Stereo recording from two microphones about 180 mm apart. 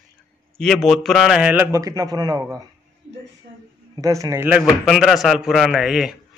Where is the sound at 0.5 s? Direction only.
5° left (ahead or behind); by 2.4 s 20° right (ahead or behind).